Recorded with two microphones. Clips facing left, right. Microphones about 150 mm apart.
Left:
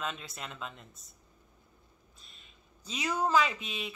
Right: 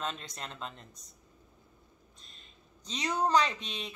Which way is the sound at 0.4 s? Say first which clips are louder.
Even; 35° right (ahead or behind).